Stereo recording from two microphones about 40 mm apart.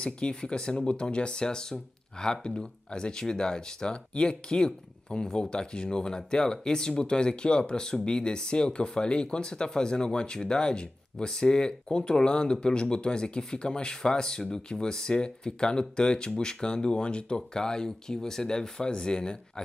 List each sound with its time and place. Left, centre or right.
0.0 s speech: left